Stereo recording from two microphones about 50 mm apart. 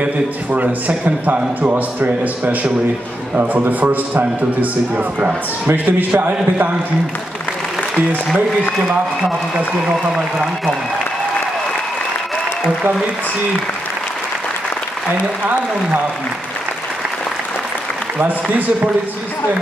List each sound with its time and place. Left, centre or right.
0.0 s a man's voice: right
15.4 s a man's voice: right